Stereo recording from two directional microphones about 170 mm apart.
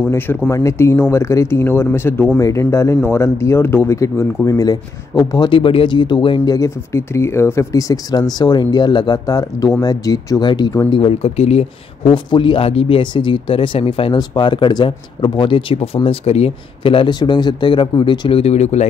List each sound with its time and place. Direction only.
0.0 s speech: 10° left (ahead or behind); by 18.9 s 40° left (ahead or behind)